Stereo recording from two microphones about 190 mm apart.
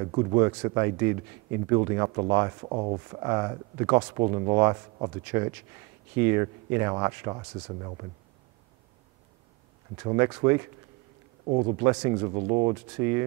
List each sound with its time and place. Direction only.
0.0 s speech: 25° right (ahead or behind)
10.1 s speech: 15° right (ahead or behind)
11.4 s speech: 30° right (ahead or behind)